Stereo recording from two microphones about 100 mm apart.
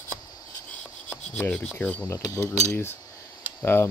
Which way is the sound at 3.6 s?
25° left (ahead or behind).